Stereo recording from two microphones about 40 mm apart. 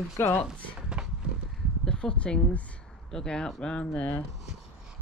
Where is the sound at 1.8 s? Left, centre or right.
Left.